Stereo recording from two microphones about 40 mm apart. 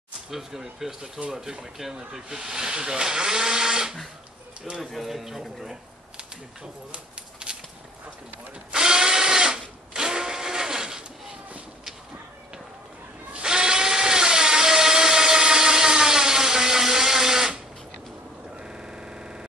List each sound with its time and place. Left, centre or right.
0.3 s speech: centre
4.9 s speech: centre
6.1 s a sound: right
8.7 s drill: centre
13.3 s tools: right
18.6 s cacophony: centre